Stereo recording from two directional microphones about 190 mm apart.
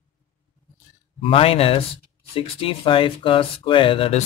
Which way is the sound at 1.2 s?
30° left (ahead or behind).